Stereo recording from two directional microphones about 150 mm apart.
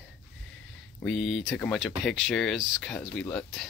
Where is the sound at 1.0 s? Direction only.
5° left (ahead or behind).